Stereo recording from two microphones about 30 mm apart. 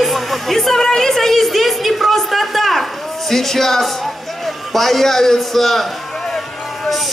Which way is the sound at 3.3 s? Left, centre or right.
Centre.